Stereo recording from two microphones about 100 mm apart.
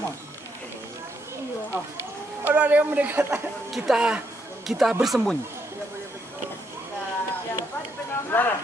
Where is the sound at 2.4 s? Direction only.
15° right (ahead or behind).